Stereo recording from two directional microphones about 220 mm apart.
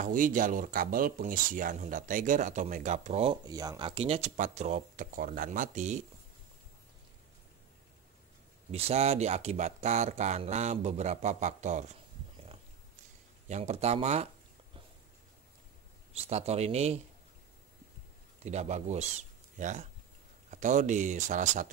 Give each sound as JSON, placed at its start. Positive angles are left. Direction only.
{"t": 0.0, "sound": "speech", "side_deg": -35}
{"t": 8.7, "sound": "speech", "side_deg": -30}
{"t": 13.5, "sound": "speech", "side_deg": -30}
{"t": 16.1, "sound": "speech", "side_deg": -30}
{"t": 18.4, "sound": "speech", "side_deg": -30}